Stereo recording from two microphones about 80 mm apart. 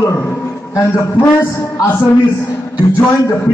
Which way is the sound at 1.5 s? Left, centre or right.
Left.